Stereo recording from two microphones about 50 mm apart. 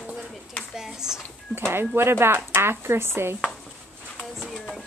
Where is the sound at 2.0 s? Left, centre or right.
Right.